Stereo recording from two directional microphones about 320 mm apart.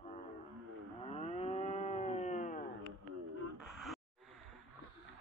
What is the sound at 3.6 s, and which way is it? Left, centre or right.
Gasp, centre.